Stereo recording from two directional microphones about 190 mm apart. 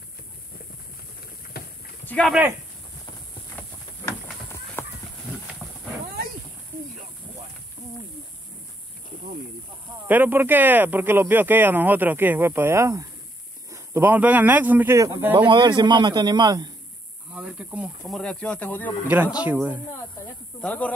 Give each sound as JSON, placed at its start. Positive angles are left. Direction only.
{"t": 1.5, "sound": "livestock", "side_deg": 55}
{"t": 2.0, "sound": "speech", "side_deg": 5}
{"t": 4.8, "sound": "horse", "side_deg": 10}
{"t": 5.6, "sound": "a sound", "side_deg": -10}
{"t": 10.0, "sound": "a man's voice", "side_deg": -10}
{"t": 17.3, "sound": "speech", "side_deg": -5}
{"t": 19.0, "sound": "speech", "side_deg": -10}
{"t": 20.6, "sound": "speech", "side_deg": 5}